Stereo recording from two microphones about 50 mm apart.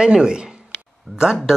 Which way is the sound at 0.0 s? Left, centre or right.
Centre.